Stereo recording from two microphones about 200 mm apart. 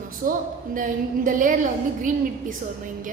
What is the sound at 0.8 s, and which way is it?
A woman's voice, 40° right (ahead or behind).